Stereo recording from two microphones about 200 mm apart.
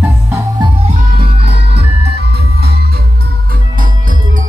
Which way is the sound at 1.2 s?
55° right (ahead or behind).